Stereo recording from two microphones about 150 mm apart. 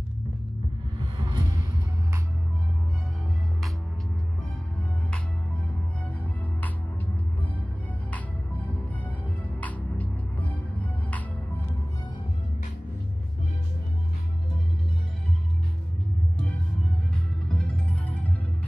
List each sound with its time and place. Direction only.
1.2 s music: 25° right (ahead or behind)
8.1 s music: 10° left (ahead or behind)
17.5 s music: 5° left (ahead or behind)